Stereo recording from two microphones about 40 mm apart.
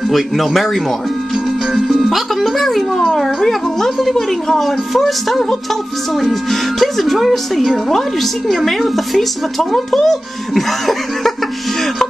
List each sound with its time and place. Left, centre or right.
0.1 s speech: centre
1.9 s music: centre
3.2 s a woman's voice: centre